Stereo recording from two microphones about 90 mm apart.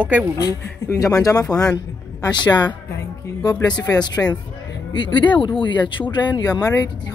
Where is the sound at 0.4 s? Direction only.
40° left (ahead or behind).